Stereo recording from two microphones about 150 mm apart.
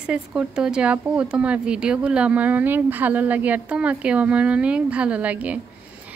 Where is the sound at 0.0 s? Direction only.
5° right (ahead or behind).